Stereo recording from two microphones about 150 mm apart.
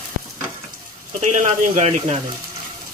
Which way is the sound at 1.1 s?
55° right (ahead or behind).